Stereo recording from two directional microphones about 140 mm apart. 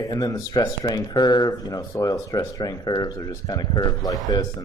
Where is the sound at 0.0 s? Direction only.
25° left (ahead or behind).